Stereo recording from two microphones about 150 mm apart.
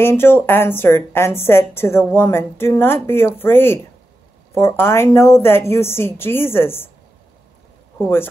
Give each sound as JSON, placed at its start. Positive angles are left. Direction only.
{"t": 0.0, "sound": "a woman's voice", "side_deg": 15}